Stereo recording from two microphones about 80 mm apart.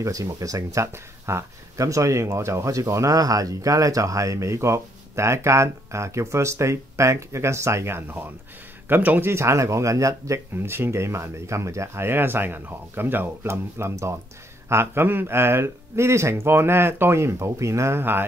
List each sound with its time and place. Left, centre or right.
0.0 s speech: right
9.3 s speech: right
10.6 s speech: right